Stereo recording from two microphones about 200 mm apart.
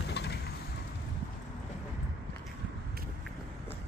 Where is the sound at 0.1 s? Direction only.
55° left (ahead or behind).